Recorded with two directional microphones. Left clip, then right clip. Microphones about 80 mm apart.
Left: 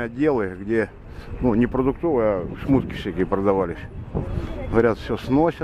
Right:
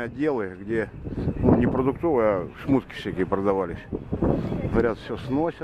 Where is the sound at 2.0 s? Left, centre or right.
Right.